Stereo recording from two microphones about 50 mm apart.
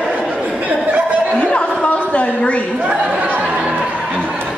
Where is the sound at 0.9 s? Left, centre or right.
Right.